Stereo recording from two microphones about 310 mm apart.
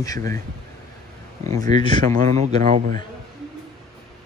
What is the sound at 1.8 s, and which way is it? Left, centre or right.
Speech, centre.